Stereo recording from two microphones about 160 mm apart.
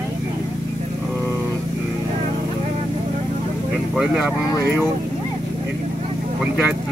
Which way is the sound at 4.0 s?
5° right (ahead or behind).